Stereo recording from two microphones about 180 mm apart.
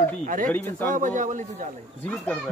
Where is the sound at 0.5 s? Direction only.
10° left (ahead or behind).